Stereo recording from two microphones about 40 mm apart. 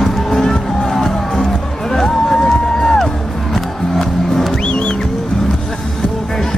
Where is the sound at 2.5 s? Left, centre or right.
Centre.